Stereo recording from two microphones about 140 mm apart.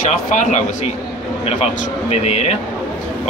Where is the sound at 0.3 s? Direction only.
65° left (ahead or behind).